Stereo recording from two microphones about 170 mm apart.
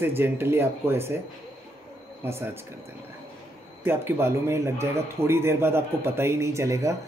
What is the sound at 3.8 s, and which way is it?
Speech, 15° right (ahead or behind).